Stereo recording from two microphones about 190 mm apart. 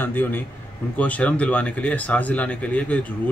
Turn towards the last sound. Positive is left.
turn(degrees=5)  # may be behind; listen again after turning